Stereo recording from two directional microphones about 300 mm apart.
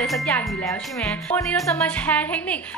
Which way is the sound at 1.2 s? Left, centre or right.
Centre.